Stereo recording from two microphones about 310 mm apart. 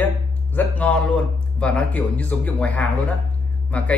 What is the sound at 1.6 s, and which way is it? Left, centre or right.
Speech, centre.